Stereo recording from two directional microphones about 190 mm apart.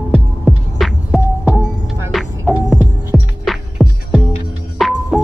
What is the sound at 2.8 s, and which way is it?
Music, 40° right (ahead or behind).